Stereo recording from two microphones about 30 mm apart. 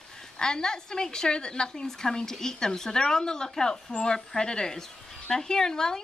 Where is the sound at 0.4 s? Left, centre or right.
Left.